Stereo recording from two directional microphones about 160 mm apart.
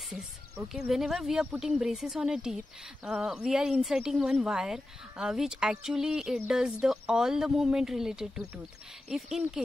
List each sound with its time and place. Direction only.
0.1 s speech: 5° right (ahead or behind)